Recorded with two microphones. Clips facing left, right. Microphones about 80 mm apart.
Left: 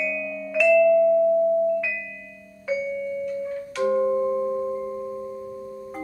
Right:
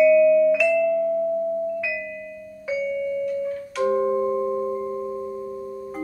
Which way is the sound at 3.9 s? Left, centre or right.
Centre.